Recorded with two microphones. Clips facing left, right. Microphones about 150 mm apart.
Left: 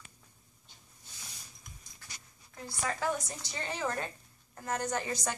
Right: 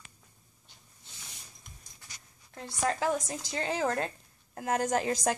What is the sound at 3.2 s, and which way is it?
A woman's voice, 90° right.